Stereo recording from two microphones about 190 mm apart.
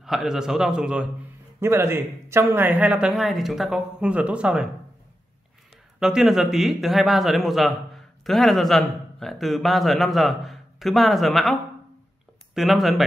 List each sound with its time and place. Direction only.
0.0 s a man's voice: centre (ahead or behind)
5.9 s a man's voice: 5° right (ahead or behind)